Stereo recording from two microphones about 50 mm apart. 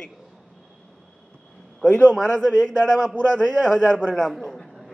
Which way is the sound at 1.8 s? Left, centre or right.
Left.